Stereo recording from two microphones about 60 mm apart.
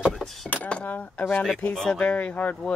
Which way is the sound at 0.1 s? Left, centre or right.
Centre.